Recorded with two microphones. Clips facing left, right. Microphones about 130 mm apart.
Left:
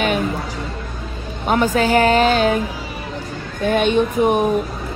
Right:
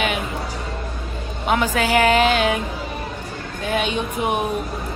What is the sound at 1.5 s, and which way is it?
Music, 40° left (ahead or behind).